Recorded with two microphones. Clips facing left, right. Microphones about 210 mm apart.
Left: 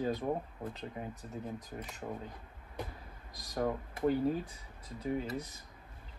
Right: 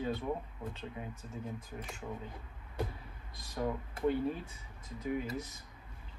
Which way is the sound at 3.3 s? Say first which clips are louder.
Left 2 dB; 40° left (ahead or behind).